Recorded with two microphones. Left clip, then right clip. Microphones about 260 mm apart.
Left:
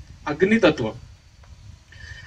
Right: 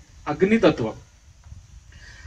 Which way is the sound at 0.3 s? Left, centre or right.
Centre.